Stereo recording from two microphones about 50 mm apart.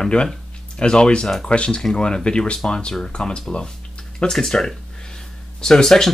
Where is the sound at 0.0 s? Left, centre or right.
Centre.